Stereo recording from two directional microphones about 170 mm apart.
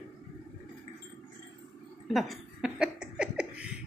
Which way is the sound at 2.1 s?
Centre (ahead or behind).